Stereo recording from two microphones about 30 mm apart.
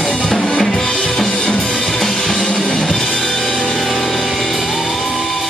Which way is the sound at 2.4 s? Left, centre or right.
Left.